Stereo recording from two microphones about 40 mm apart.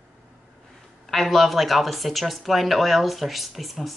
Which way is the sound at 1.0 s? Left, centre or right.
Centre.